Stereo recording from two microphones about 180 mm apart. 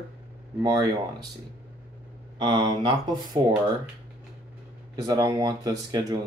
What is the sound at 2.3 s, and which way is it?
Speech, 25° right (ahead or behind).